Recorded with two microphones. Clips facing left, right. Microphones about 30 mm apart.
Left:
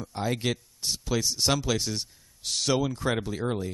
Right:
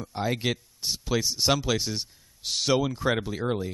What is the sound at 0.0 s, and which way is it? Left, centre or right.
Speech, centre.